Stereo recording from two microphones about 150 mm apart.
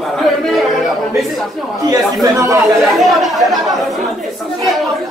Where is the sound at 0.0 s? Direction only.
Centre (ahead or behind).